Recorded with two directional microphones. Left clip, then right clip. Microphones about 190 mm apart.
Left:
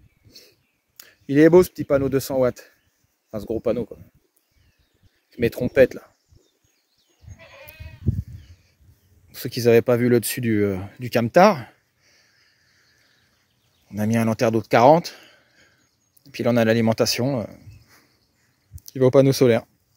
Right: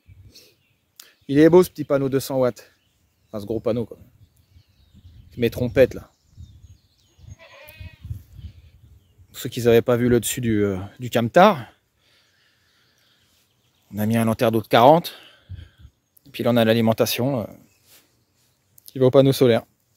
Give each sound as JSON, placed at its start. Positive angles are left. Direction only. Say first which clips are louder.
{"t": 0.3, "sound": "speech", "louder": "left 2 dB", "side_deg": 0}
{"t": 5.3, "sound": "speech", "louder": "even", "side_deg": 0}
{"t": 7.3, "sound": "goat", "louder": "left 1 dB", "side_deg": 55}
{"t": 9.3, "sound": "speech", "louder": "even", "side_deg": 0}
{"t": 13.8, "sound": "speech", "louder": "even", "side_deg": 0}
{"t": 18.9, "sound": "speech", "louder": "even", "side_deg": -5}